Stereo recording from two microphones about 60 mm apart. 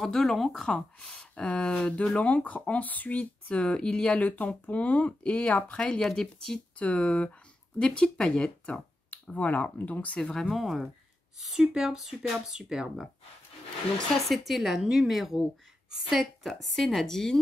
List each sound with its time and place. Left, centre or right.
0.0 s a woman's voice: centre
1.3 s speech: left
4.2 s speech: left
5.8 s speech: centre
9.1 s speech: left
10.3 s a woman's voice: centre
14.3 s a woman's voice: centre